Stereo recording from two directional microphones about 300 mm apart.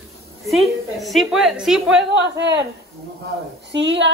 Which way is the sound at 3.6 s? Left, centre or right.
Right.